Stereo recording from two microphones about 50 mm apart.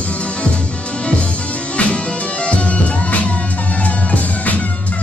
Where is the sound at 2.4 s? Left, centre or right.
Left.